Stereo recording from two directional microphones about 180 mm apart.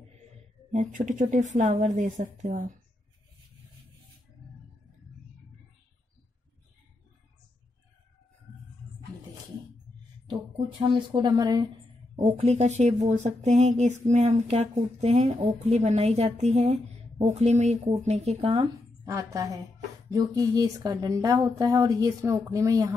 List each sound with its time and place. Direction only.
0.7 s a woman's voice: 45° right (ahead or behind)
10.8 s speech: 25° right (ahead or behind)
12.2 s speech: 35° right (ahead or behind)
19.0 s speech: 20° right (ahead or behind)